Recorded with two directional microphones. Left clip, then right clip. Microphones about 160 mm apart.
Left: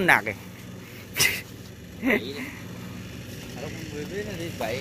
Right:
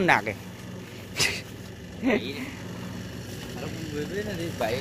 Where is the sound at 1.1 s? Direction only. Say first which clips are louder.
Left 3 dB; centre (ahead or behind).